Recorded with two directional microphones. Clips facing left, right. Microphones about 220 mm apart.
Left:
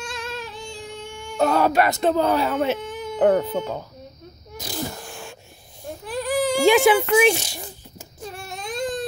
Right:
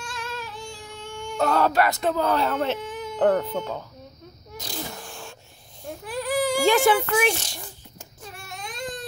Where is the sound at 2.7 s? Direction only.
Centre (ahead or behind).